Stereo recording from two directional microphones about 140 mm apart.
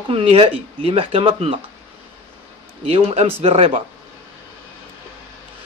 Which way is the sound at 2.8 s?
45° right (ahead or behind).